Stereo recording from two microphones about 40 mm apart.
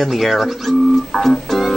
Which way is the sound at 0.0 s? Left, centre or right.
Centre.